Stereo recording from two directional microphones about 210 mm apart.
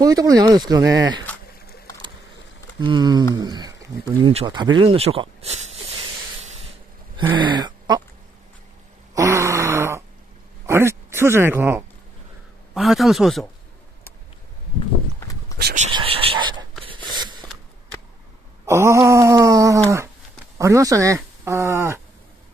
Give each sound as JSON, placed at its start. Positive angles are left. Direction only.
{"t": 0.0, "sound": "speech", "side_deg": -15}
{"t": 2.8, "sound": "speech", "side_deg": -20}
{"t": 7.3, "sound": "speech", "side_deg": -20}
{"t": 9.1, "sound": "fart", "side_deg": -15}
{"t": 10.7, "sound": "a man's voice", "side_deg": -10}
{"t": 15.6, "sound": "speech", "side_deg": -35}
{"t": 15.9, "sound": "whispering", "side_deg": -25}
{"t": 18.7, "sound": "speech", "side_deg": -15}